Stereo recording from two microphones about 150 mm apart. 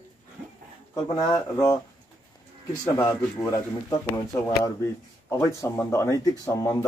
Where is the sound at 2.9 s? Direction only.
20° left (ahead or behind).